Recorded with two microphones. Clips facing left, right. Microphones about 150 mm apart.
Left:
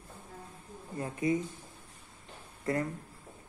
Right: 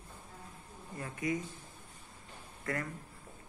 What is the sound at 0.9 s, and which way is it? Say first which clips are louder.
Speech: left 5 dB; 25° left (ahead or behind).